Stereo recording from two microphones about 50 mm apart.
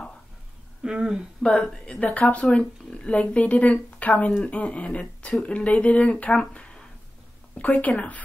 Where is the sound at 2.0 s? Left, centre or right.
Left.